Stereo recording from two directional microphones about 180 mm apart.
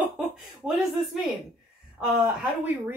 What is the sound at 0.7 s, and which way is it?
Speech, centre (ahead or behind).